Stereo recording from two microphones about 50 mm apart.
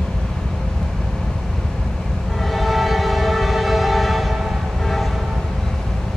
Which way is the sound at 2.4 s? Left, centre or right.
Centre.